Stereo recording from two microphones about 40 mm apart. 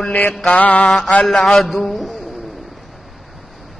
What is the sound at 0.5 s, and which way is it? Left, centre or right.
Mantra, left.